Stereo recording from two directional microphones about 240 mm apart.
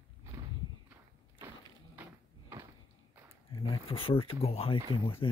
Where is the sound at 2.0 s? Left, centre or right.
Centre.